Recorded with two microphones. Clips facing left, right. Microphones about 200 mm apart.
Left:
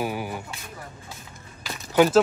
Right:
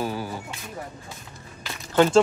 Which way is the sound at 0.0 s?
15° left (ahead or behind).